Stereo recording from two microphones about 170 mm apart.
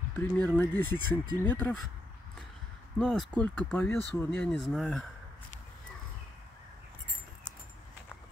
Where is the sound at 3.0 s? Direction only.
Centre (ahead or behind).